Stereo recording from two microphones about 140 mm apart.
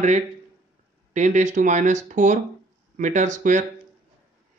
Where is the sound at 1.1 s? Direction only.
60° right (ahead or behind).